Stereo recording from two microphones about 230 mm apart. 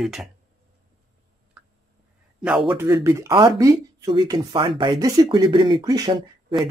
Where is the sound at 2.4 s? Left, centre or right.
Centre.